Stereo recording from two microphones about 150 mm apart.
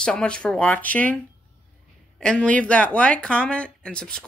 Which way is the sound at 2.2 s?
5° left (ahead or behind).